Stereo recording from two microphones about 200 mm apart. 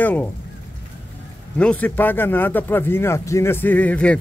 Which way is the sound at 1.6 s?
5° left (ahead or behind).